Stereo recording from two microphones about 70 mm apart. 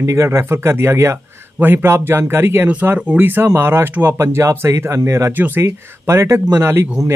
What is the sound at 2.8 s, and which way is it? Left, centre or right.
Speech, right.